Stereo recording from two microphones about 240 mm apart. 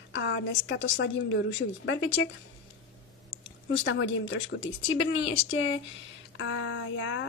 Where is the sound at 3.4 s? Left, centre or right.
Left.